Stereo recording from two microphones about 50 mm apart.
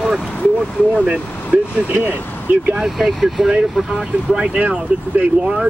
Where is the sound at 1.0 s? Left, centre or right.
Right.